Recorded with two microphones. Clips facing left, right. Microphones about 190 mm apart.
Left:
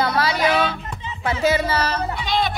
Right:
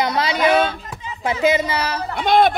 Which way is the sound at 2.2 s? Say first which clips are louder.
Right 12 dB; 55° right (ahead or behind).